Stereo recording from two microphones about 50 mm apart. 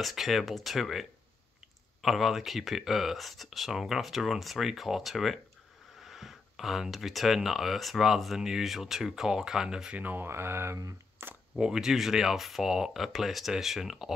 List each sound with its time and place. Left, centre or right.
0.0 s speech: centre
9.9 s speech: right
10.2 s mantra: right
11.2 s speech: right
11.5 s speech: centre